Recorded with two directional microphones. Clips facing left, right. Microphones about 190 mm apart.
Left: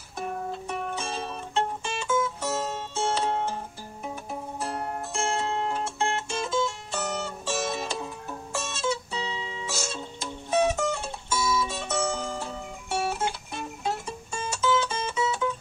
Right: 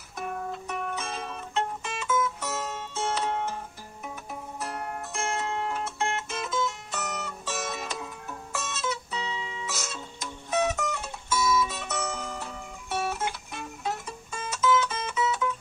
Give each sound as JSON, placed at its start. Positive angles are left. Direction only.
{"t": 0.2, "sound": "music", "side_deg": 30}
{"t": 4.0, "sound": "zither", "side_deg": 30}